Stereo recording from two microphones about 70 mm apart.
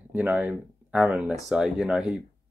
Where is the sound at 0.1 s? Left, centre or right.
Right.